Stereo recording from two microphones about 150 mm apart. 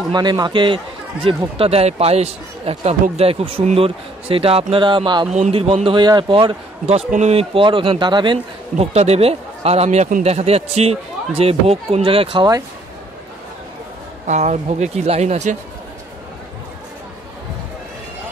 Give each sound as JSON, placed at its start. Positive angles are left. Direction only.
{"t": 0.1, "sound": "a man's voice", "side_deg": -30}
{"t": 8.7, "sound": "speech", "side_deg": -45}
{"t": 14.2, "sound": "speech", "side_deg": -50}